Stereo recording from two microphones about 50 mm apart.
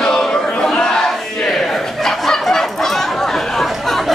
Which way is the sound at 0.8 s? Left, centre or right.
Centre.